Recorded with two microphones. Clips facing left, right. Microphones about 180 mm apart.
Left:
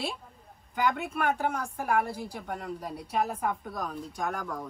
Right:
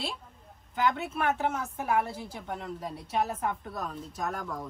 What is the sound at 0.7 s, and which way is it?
A woman's voice, centre (ahead or behind).